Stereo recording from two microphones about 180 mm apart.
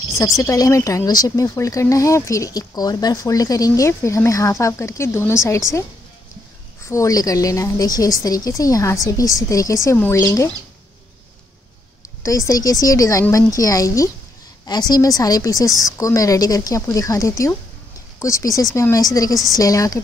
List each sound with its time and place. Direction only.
0.2 s speech: 15° left (ahead or behind)
6.8 s a woman's voice: 15° left (ahead or behind)
12.2 s a woman's voice: 20° left (ahead or behind)